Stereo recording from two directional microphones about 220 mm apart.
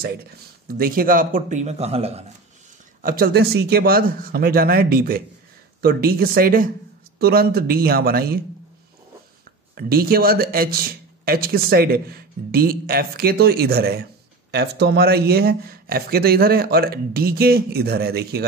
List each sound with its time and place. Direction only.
0.7 s speech: 40° right (ahead or behind)
3.0 s a man's voice: 40° right (ahead or behind)
9.8 s a man's voice: 45° right (ahead or behind)